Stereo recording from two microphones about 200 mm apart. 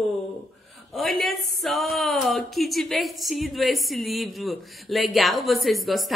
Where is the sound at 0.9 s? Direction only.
Centre (ahead or behind).